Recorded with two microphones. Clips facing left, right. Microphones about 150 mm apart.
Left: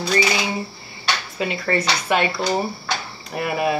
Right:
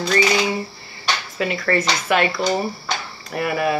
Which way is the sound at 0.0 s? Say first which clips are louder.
Right 2 dB; 10° left (ahead or behind).